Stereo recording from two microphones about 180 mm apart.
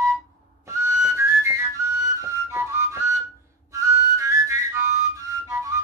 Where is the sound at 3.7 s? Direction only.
15° right (ahead or behind).